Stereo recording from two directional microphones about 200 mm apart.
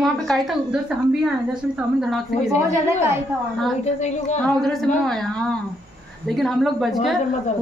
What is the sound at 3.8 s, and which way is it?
Speech, 35° left (ahead or behind).